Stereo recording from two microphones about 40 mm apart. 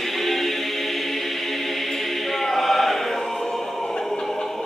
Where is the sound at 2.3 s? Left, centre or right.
Centre.